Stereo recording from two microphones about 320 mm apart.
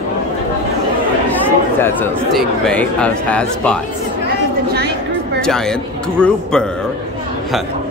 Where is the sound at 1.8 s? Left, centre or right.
Centre.